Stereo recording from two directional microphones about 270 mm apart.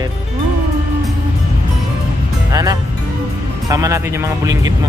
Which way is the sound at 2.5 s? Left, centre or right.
Centre.